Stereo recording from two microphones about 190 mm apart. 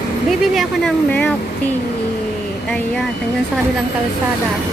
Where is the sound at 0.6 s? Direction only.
5° left (ahead or behind).